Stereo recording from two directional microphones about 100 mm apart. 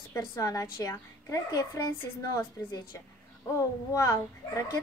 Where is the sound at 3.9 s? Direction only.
35° left (ahead or behind).